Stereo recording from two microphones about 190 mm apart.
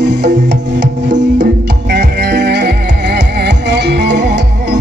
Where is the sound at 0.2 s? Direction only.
65° right (ahead or behind).